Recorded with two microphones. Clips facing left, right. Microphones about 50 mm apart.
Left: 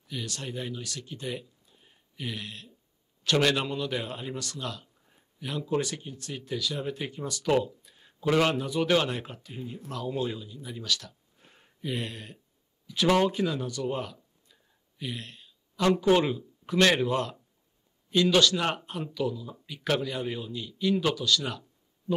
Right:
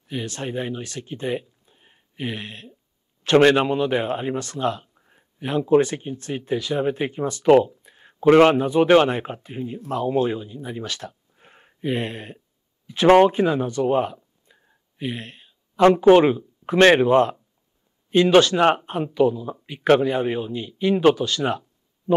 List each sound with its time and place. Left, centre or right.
0.0 s a man's voice: right